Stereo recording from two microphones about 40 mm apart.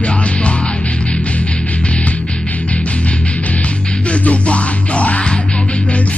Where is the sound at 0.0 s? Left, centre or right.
Left.